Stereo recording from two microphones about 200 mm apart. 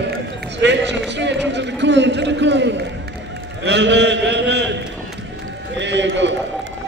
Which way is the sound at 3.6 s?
60° right (ahead or behind).